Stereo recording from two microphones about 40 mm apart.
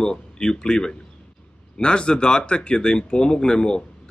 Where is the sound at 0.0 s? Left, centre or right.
Centre.